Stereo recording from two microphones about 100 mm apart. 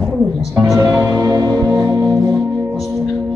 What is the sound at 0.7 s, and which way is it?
Music, 30° right (ahead or behind).